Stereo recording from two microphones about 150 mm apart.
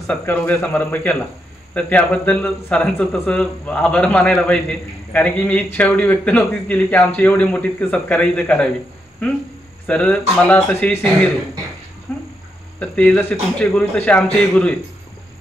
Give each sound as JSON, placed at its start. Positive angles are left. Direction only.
{"t": 0.2, "sound": "a man's voice", "side_deg": 10}
{"t": 9.8, "sound": "a man's voice", "side_deg": 10}
{"t": 12.1, "sound": "a sound", "side_deg": 10}
{"t": 12.7, "sound": "a man's voice", "side_deg": 10}